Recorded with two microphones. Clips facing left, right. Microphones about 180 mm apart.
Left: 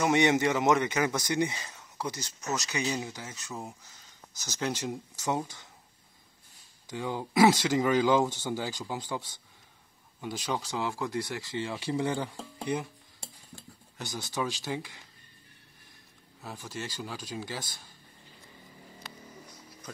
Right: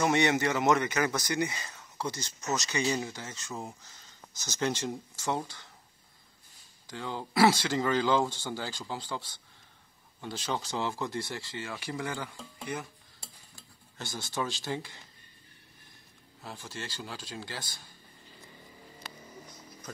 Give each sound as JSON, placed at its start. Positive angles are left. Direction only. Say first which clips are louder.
{"t": 0.0, "sound": "speech", "louder": "left 2 dB", "side_deg": 15}
{"t": 6.9, "sound": "speech", "louder": "left 3 dB", "side_deg": 15}
{"t": 11.5, "sound": "speech", "louder": "left 8 dB", "side_deg": 25}
{"t": 13.6, "sound": "speech", "louder": "left 1 dB", "side_deg": 15}
{"t": 16.3, "sound": "speech", "louder": "left 2 dB", "side_deg": 5}
{"t": 17.4, "sound": "speech", "louder": "left 3 dB", "side_deg": 20}